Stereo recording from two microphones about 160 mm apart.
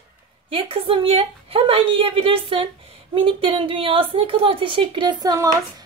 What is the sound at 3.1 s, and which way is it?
Speech, 35° right (ahead or behind).